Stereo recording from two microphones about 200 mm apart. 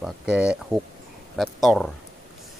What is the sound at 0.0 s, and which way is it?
Speech, 5° right (ahead or behind).